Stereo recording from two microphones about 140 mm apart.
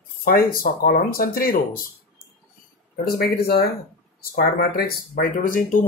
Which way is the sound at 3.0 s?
90° left.